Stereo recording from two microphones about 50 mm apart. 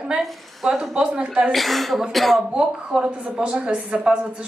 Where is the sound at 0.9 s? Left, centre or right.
Centre.